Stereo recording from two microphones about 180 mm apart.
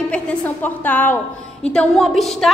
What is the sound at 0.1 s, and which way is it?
A woman's voice, 10° left (ahead or behind).